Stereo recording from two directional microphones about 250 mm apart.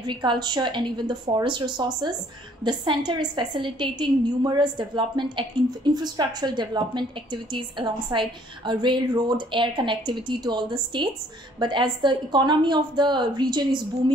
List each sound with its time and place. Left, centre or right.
0.0 s a woman's voice: centre